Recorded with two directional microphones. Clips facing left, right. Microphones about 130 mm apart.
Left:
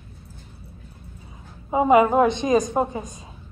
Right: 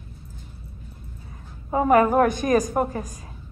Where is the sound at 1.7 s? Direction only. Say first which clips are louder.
Left 2 dB; 15° left (ahead or behind).